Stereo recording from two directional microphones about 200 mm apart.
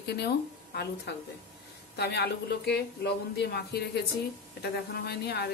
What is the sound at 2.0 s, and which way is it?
A woman's voice, 55° left (ahead or behind).